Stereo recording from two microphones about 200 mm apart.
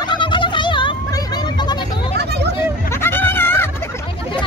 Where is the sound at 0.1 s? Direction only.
25° left (ahead or behind).